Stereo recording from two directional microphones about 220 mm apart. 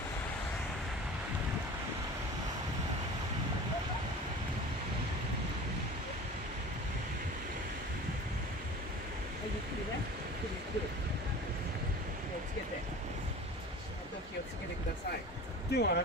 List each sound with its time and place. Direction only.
15.7 s speech: 50° left (ahead or behind)